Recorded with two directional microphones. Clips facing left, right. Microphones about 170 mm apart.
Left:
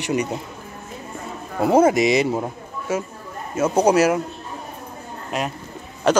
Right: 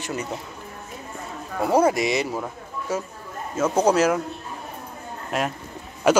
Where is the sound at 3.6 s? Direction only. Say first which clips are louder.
Left 3 dB; 10° left (ahead or behind).